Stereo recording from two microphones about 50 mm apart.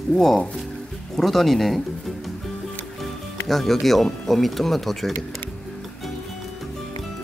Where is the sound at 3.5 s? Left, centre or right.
Centre.